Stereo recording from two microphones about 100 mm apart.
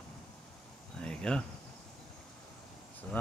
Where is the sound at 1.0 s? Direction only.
5° left (ahead or behind).